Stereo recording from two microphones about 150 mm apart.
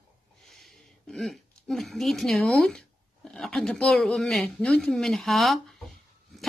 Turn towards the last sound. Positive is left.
turn(degrees=0)  # may be behind; listen again after turning